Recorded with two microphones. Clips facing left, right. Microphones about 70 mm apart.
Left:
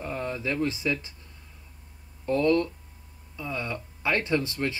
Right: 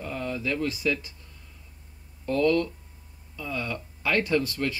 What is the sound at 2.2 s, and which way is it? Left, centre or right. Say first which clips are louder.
Speech: even; left.